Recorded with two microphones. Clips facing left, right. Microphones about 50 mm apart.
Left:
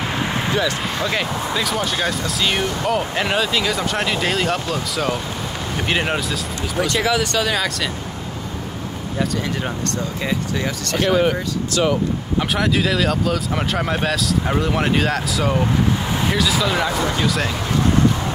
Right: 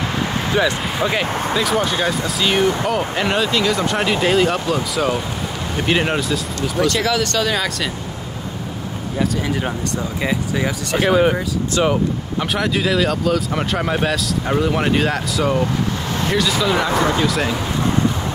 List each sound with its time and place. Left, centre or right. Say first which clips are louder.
0.6 s speech: right 3 dB; centre
1.9 s speech: right 2 dB; centre
6.8 s speech: right 1 dB; centre
9.2 s speech: right 2 dB; centre
12.4 s speech: left 1 dB; centre